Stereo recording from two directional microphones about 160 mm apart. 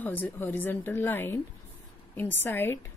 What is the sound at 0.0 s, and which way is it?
A woman's voice, 10° left (ahead or behind).